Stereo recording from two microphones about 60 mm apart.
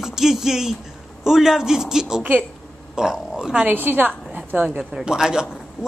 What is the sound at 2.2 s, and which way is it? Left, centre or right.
Speech, right.